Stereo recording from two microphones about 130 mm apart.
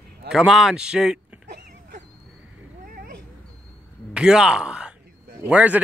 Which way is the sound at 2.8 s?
90° right.